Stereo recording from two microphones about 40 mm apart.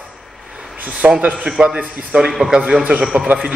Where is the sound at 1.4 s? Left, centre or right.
Right.